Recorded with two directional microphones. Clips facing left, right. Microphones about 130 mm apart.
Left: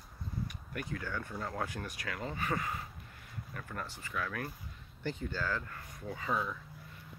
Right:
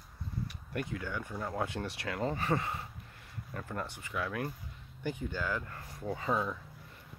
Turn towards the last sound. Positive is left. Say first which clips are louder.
# right 3 dB
turn(degrees=-15)  # may be behind; listen again after turning